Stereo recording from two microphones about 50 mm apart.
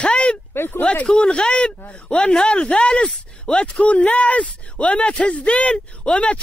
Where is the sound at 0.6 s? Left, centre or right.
Left.